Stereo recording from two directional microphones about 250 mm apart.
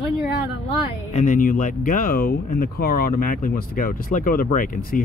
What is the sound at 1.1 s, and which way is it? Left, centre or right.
Speech, left.